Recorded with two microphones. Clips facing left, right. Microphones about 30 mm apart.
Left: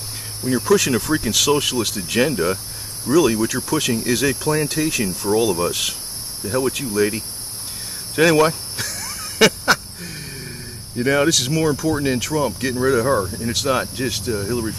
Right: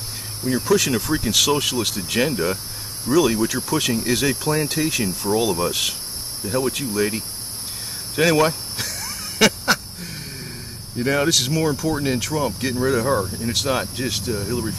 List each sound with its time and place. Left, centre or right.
0.5 s speech: centre
8.2 s a sound: centre
11.0 s speech: centre